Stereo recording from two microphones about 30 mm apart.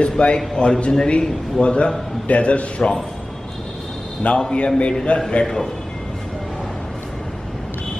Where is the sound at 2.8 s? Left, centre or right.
Left.